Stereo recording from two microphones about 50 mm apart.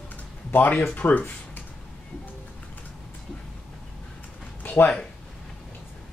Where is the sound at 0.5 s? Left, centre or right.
Left.